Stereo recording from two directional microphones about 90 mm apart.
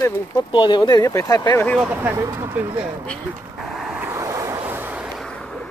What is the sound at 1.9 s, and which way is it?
Speech, 20° right (ahead or behind).